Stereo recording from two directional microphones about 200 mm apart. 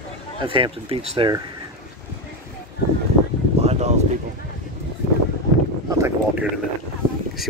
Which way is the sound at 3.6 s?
35° right (ahead or behind).